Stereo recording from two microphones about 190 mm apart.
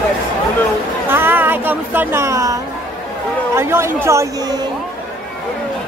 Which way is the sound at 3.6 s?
15° right (ahead or behind).